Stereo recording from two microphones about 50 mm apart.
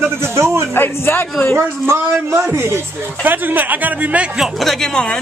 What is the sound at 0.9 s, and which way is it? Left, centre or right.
Speech, left.